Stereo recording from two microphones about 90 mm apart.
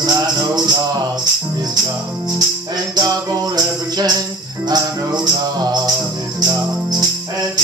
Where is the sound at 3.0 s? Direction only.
50° right (ahead or behind).